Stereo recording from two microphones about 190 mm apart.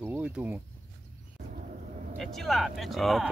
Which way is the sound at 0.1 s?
10° right (ahead or behind).